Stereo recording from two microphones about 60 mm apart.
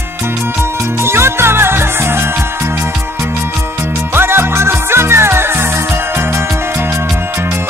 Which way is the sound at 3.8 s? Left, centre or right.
Right.